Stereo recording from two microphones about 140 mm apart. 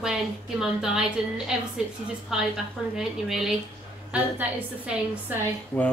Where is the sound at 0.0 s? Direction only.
5° right (ahead or behind).